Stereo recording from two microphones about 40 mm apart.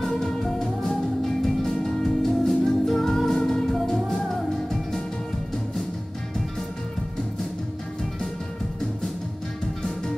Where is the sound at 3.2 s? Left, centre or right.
Centre.